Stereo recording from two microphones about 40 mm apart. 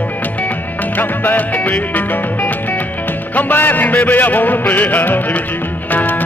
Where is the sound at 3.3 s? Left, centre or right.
Left.